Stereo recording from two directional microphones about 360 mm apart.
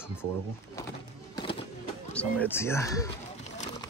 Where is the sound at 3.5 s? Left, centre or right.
Centre.